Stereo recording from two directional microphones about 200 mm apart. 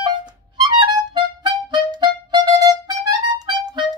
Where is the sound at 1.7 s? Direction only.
20° right (ahead or behind).